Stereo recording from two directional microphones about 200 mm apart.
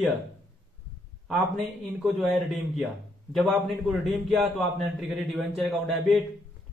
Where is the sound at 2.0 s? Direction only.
Centre (ahead or behind).